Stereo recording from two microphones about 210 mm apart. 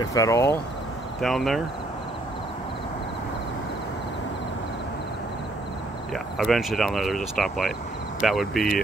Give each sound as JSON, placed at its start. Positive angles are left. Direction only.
{"t": 0.0, "sound": "speech", "side_deg": 15}
{"t": 1.2, "sound": "speech", "side_deg": 0}
{"t": 6.1, "sound": "speech", "side_deg": 0}